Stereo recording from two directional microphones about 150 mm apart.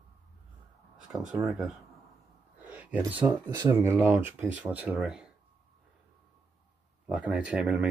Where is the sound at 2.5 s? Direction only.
10° right (ahead or behind).